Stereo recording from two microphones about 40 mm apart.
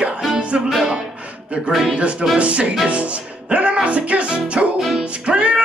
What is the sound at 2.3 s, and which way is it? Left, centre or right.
Speech, right.